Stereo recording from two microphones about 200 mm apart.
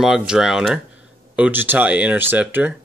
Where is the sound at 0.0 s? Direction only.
5° right (ahead or behind).